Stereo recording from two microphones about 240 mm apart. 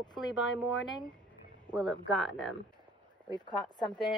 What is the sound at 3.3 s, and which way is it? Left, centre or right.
Speech, centre.